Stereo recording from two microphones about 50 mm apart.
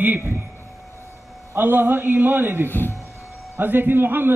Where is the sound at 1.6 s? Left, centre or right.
Right.